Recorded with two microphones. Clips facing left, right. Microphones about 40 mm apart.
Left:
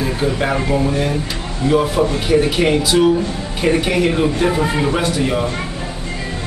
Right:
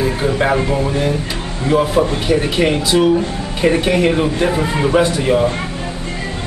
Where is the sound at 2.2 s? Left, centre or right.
Centre.